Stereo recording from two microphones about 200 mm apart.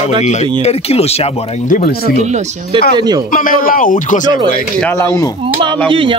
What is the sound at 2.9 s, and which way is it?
Speech, 20° right (ahead or behind).